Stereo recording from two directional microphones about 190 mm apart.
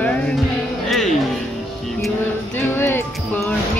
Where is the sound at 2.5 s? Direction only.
10° left (ahead or behind).